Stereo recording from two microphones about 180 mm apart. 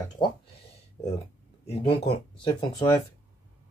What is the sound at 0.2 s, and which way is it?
Speech, 25° left (ahead or behind).